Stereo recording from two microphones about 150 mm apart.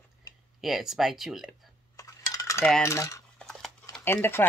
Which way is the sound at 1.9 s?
20° left (ahead or behind).